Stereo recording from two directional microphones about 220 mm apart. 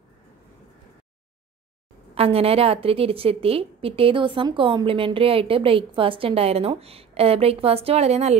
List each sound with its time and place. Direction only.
2.1 s a woman's voice: 25° right (ahead or behind)